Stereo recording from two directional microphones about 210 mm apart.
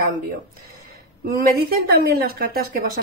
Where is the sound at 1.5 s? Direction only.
45° right (ahead or behind).